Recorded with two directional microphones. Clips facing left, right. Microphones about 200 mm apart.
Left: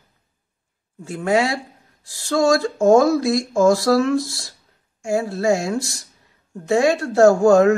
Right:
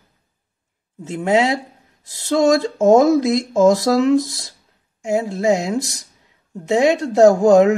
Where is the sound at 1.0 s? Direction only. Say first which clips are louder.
Right 2 dB; 20° right (ahead or behind).